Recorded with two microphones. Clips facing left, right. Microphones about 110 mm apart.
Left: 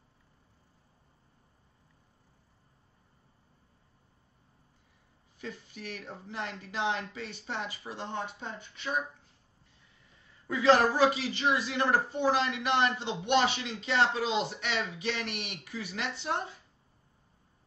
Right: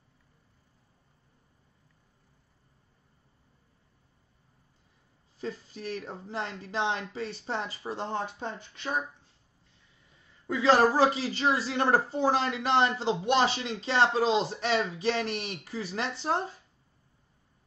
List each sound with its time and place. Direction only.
5.4 s a woman's voice: 30° right (ahead or behind)
10.4 s a woman's voice: 30° right (ahead or behind)